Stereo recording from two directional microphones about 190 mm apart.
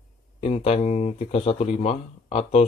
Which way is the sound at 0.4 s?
35° left (ahead or behind).